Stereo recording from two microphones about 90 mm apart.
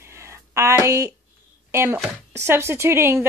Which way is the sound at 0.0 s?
30° right (ahead or behind).